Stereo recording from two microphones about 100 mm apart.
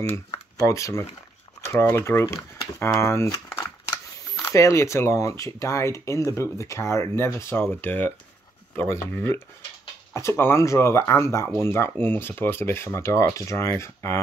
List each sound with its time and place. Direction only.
0.6 s speech: 30° left (ahead or behind)
4.4 s speech: 30° left (ahead or behind)